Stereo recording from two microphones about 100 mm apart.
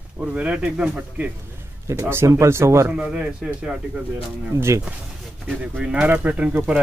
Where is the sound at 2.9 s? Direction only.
10° right (ahead or behind).